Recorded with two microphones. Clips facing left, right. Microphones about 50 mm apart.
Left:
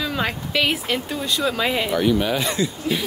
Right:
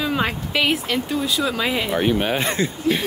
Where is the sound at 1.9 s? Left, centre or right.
Right.